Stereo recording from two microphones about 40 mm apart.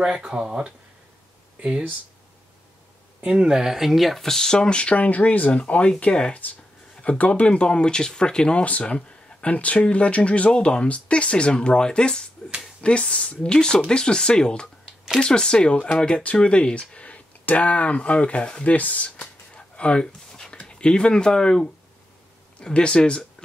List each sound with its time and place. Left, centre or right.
0.0 s speech: centre
3.3 s speech: centre; by 4.9 s left
4.9 s speech: left
5.5 s speech: left
7.0 s speech: left
8.6 s speech: left
18.7 s a sound: left; by 20.5 s centre
20.5 s speech: left
22.6 s speech: left